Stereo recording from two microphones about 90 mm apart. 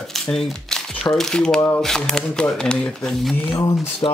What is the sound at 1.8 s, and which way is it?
Speech, 5° left (ahead or behind).